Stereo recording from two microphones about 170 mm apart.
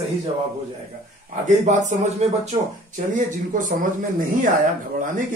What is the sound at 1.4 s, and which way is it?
Speech, 45° right (ahead or behind).